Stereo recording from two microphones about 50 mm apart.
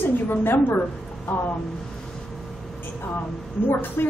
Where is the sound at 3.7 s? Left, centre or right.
Left.